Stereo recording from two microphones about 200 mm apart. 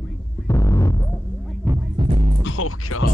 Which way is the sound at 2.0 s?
30° right (ahead or behind).